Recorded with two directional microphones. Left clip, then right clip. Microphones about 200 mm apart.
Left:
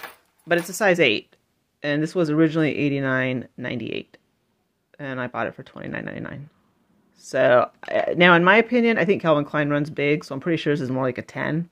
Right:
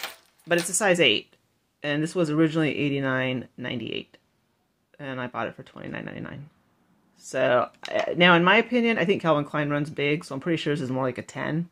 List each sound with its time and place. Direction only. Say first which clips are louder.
0.7 s speech: left 2 dB; 15° left (ahead or behind)